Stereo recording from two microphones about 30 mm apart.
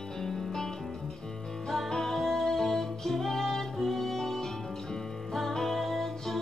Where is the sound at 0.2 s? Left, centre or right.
Centre.